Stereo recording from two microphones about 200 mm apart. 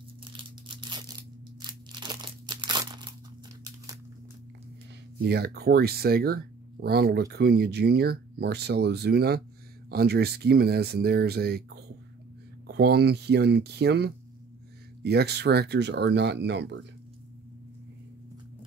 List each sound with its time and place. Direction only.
0.2 s crumpling: 25° right (ahead or behind)
5.2 s speech: 55° right (ahead or behind)